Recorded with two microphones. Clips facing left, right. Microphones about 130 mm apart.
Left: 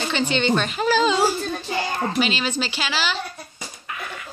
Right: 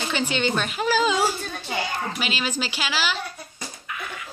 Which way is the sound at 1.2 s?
35° left (ahead or behind).